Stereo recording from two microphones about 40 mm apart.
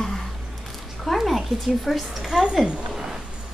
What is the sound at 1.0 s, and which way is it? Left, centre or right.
Speech, centre.